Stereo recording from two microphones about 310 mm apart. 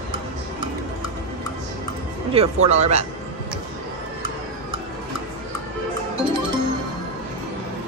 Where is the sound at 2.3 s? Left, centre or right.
Centre.